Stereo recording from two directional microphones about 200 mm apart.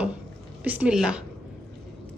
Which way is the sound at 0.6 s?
5° right (ahead or behind).